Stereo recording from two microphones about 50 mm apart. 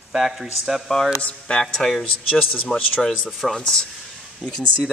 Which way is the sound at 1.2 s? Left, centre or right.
Left.